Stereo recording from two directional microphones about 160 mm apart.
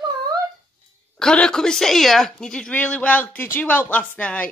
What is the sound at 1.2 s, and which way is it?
A woman's voice, 5° left (ahead or behind).